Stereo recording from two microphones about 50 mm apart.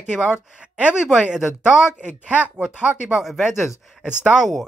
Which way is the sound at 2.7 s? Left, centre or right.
Centre.